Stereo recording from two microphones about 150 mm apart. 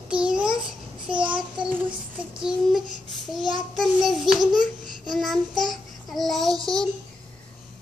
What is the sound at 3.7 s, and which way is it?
A child's voice, centre (ahead or behind).